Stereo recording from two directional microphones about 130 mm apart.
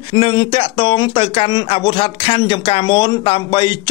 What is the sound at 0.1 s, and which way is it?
Speech, 40° left (ahead or behind).